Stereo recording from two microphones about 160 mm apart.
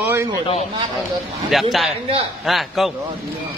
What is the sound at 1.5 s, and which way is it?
Speech, centre (ahead or behind).